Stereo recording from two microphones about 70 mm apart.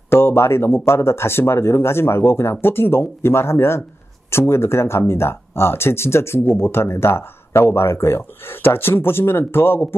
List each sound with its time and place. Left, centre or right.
0.1 s speech: left